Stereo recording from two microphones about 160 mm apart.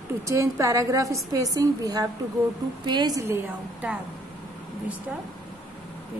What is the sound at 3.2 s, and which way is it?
Speech, 10° right (ahead or behind).